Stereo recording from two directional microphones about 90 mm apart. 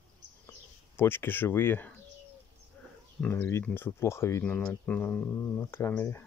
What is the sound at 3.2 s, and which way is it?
Speech, 20° left (ahead or behind).